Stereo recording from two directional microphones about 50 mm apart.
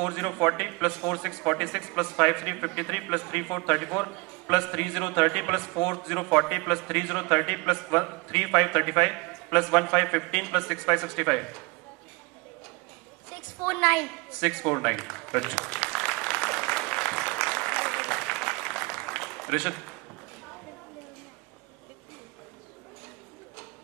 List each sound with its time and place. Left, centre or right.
0.0 s a man's voice: centre
11.2 s speech: centre
13.3 s a sound: centre
13.8 s a man's voice: centre
15.6 s applause: centre
19.3 s a sound: centre